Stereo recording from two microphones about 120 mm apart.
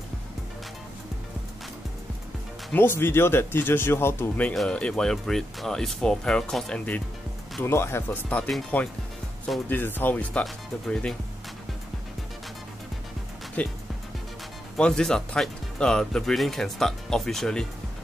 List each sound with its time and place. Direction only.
2.7 s speech: 20° left (ahead or behind)
7.6 s speech: 20° left (ahead or behind)
9.7 s speech: 15° left (ahead or behind)
13.6 s speech: 10° left (ahead or behind)
14.8 s speech: 5° left (ahead or behind)